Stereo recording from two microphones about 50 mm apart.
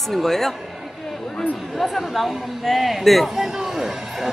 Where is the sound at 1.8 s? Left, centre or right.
Centre.